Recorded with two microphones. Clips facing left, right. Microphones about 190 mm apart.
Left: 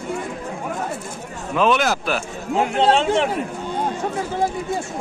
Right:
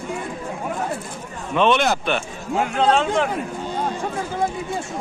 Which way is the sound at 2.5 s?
25° left (ahead or behind).